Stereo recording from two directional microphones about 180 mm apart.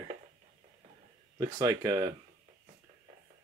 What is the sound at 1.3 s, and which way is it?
Speech, 20° right (ahead or behind).